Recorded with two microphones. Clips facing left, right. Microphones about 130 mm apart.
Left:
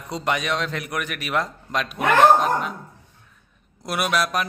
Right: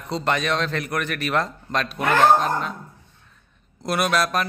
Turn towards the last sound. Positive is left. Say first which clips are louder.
# right 1 dB
turn(degrees=10)  # may be behind; listen again after turning